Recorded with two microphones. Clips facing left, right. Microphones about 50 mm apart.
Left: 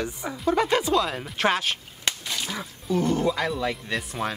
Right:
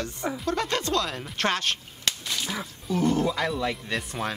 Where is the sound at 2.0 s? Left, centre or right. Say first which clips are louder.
Left 1 dB; centre.